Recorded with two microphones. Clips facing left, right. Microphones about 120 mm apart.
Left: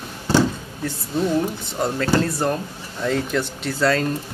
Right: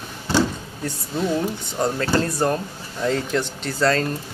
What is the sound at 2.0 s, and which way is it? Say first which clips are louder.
Speech: left 2 dB; 5° left (ahead or behind).